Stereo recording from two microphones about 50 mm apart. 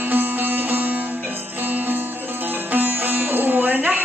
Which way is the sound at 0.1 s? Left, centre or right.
Right.